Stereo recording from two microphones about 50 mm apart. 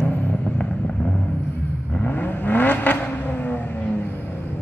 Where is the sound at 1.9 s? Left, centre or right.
Left.